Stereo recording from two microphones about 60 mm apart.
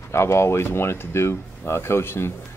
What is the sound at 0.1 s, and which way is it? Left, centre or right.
Speech, left.